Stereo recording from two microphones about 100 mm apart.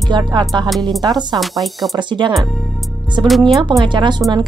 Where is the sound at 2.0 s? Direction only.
50° right (ahead or behind).